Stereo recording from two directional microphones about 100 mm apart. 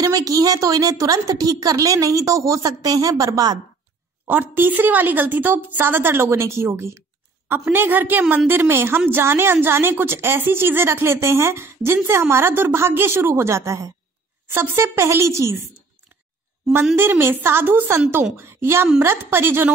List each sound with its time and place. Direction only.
0.0 s a woman's voice: 35° right (ahead or behind)
4.3 s a woman's voice: 20° right (ahead or behind)
16.9 s a woman's voice: 25° right (ahead or behind)